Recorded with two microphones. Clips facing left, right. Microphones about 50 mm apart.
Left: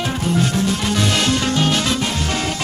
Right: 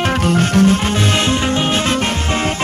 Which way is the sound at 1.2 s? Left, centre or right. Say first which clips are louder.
Right 2 dB; right.